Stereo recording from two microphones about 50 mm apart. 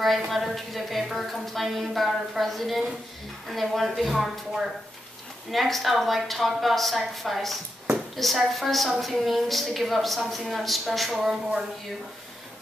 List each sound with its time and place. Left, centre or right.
0.3 s a woman's voice: centre